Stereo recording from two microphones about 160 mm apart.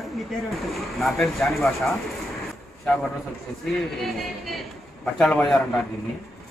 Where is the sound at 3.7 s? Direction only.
Centre (ahead or behind).